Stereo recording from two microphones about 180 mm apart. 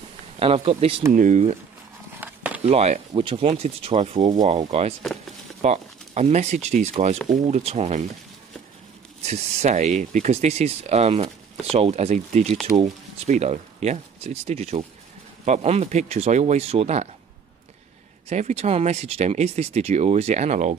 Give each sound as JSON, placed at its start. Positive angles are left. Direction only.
{"t": 0.4, "sound": "speech", "side_deg": -30}
{"t": 1.1, "sound": "speech", "side_deg": -45}
{"t": 2.1, "sound": "a sound", "side_deg": -10}
{"t": 2.6, "sound": "speech", "side_deg": -35}
{"t": 9.2, "sound": "speech", "side_deg": -35}
{"t": 18.3, "sound": "speech", "side_deg": -40}